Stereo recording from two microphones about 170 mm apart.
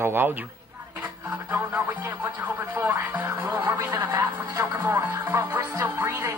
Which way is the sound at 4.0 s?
20° right (ahead or behind).